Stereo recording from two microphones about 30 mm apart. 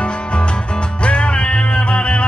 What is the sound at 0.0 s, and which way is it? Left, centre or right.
Music, left.